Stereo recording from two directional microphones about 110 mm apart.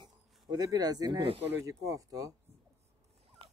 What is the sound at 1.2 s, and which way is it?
Speech, 60° right (ahead or behind).